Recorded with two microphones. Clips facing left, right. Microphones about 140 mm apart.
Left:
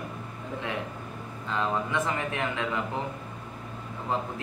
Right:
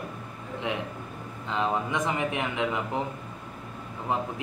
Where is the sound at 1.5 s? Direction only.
15° right (ahead or behind).